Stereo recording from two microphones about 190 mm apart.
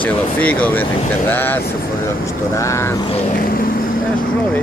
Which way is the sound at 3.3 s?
50° left (ahead or behind).